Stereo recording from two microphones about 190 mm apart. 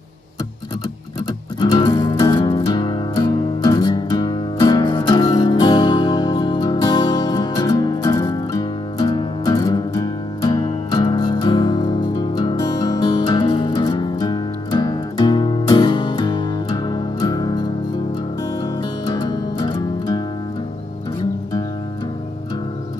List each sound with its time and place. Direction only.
1.6 s music: 25° left (ahead or behind)
19.1 s music: 25° left (ahead or behind)